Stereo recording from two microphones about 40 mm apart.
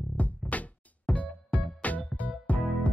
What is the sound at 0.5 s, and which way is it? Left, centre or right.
Music, left.